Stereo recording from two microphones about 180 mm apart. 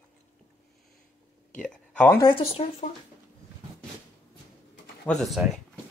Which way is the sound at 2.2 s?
30° left (ahead or behind).